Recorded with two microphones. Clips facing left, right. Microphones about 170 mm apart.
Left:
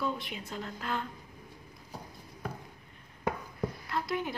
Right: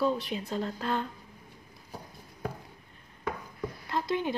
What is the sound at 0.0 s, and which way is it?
Speech, 35° right (ahead or behind).